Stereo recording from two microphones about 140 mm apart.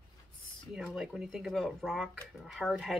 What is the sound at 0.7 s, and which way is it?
Speech, centre (ahead or behind).